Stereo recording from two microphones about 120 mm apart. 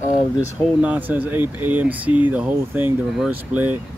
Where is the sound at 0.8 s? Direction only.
15° right (ahead or behind).